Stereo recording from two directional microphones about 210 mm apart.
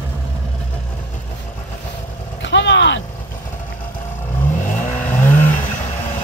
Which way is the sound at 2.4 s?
60° left (ahead or behind).